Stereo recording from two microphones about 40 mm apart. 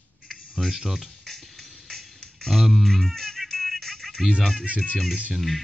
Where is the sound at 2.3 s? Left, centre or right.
Centre.